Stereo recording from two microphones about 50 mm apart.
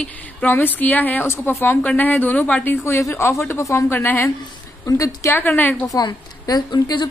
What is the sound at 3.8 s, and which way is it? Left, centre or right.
Speech, left.